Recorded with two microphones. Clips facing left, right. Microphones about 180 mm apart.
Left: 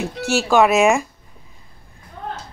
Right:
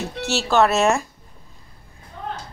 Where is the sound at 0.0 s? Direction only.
15° left (ahead or behind).